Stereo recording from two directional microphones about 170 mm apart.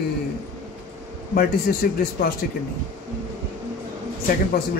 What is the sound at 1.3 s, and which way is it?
Speech, 65° left (ahead or behind).